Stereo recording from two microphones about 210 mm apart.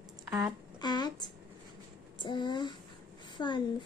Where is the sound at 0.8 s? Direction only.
20° left (ahead or behind).